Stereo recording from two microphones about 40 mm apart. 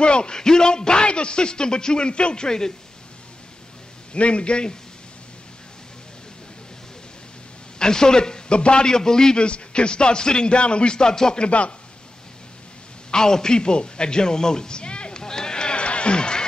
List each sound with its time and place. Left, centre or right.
0.0 s a man's voice: left
4.1 s a man's voice: left
7.8 s a man's voice: centre
11.4 s a man's voice: left
13.1 s a sound: centre